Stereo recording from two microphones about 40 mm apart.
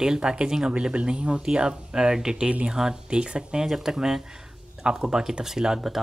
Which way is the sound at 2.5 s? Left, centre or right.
Right.